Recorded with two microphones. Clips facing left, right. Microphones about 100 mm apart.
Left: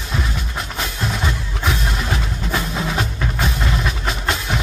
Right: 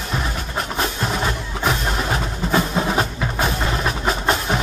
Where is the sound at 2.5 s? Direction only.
35° right (ahead or behind).